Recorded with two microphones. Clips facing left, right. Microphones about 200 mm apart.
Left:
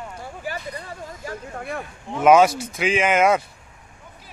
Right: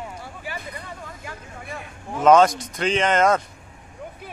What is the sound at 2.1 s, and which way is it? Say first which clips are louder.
Speech: left 1 dB; 10° left (ahead or behind).